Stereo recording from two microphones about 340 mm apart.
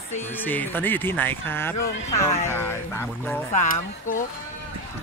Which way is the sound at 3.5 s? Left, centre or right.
Left.